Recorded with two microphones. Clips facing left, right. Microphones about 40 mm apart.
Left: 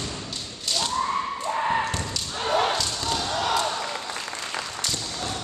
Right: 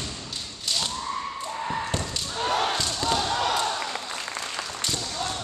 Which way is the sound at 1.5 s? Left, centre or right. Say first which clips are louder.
Left 7 dB; left.